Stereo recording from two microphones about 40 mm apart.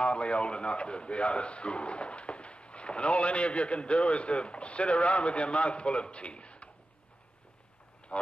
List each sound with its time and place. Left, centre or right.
0.0 s a man's voice: left
8.1 s speech: left